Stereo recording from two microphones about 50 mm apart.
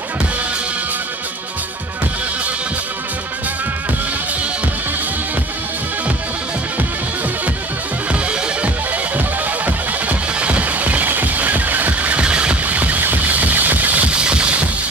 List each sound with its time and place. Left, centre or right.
9.7 s music: right
12.2 s a sound: right
12.6 s music: right
14.1 s music: right